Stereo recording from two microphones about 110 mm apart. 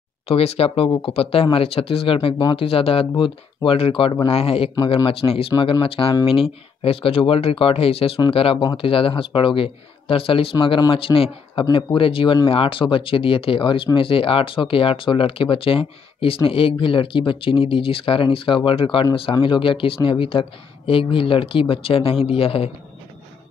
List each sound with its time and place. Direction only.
0.3 s speech: 65° left (ahead or behind)
4.7 s speech: 50° left (ahead or behind)